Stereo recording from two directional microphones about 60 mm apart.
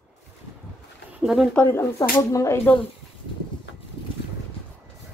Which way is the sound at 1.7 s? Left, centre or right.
Left.